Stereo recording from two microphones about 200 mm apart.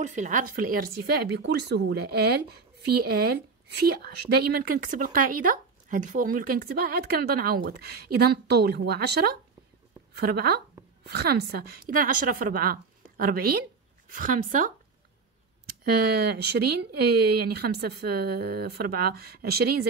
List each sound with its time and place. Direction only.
0.0 s speech: 40° right (ahead or behind)